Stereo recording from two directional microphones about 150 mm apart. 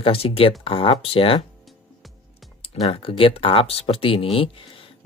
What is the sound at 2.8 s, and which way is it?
Speech, 35° left (ahead or behind).